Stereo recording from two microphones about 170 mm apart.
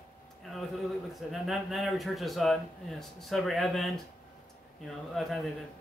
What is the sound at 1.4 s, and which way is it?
Speech, centre (ahead or behind).